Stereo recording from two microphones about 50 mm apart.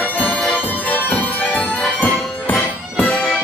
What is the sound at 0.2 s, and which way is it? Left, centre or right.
Music, left.